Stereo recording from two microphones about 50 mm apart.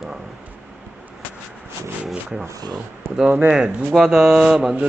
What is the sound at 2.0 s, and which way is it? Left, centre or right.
Speech, centre.